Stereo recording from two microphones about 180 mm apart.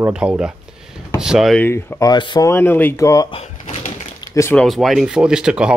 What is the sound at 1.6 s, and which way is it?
Speech, 10° left (ahead or behind).